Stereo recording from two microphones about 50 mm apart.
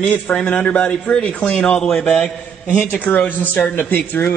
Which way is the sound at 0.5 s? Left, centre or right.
Left.